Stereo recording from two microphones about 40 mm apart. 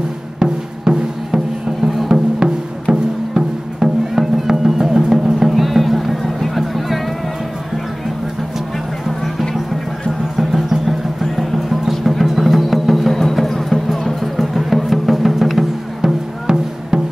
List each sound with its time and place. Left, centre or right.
0.4 s music: centre
10.3 s music: centre